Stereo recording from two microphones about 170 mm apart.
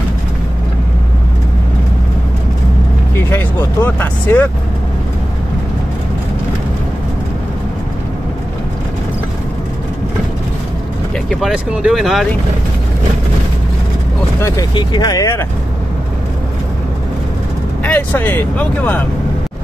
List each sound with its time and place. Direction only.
3.2 s vehicle: 15° left (ahead or behind)
11.2 s speech: 5° right (ahead or behind)
14.4 s speech: 25° left (ahead or behind)
17.8 s speech: 10° left (ahead or behind)